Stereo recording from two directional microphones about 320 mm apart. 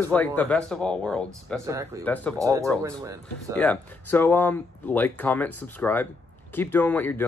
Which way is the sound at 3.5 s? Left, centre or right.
Centre.